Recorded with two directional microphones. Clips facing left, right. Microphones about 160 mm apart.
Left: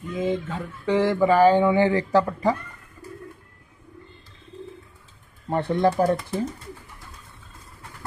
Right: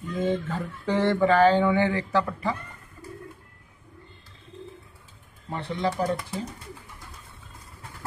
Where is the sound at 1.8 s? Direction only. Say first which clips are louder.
Left 5 dB; 35° left (ahead or behind).